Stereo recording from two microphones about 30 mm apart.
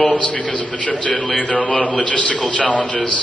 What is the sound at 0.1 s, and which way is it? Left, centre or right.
A man's voice, left.